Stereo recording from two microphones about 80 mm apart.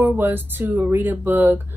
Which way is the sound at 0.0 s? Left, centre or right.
Right.